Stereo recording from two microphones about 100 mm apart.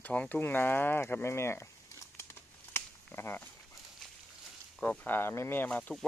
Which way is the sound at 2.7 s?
25° left (ahead or behind).